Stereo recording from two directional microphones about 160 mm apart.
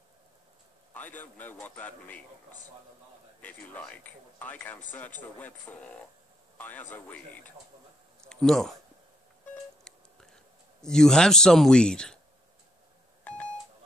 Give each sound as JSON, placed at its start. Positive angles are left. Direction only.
{"t": 0.9, "sound": "speech", "side_deg": 10}
{"t": 3.4, "sound": "speech", "side_deg": 10}
{"t": 9.8, "sound": "clicking", "side_deg": 5}